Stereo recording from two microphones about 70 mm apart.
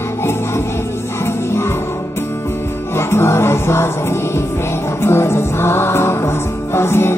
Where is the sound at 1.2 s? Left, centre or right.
Left.